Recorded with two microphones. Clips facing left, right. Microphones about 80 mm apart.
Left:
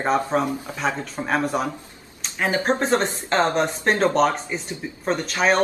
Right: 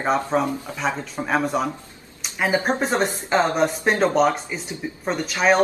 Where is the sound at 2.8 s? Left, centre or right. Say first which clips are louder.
Left 1 dB; centre.